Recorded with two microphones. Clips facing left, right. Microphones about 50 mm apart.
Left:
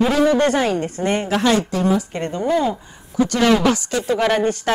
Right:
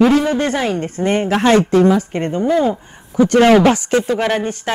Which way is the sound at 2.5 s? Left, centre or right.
Right.